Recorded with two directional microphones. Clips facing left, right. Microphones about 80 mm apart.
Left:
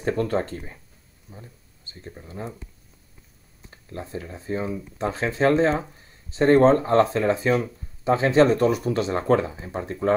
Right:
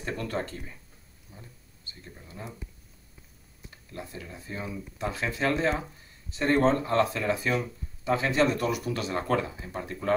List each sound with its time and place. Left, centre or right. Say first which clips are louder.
0.0 s speech: left 8 dB; left
3.7 s speech: left 7 dB; left